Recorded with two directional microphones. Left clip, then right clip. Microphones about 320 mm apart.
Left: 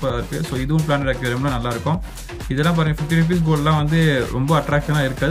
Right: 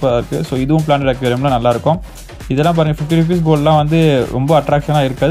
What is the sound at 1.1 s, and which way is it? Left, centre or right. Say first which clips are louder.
Speech: right 7 dB; right.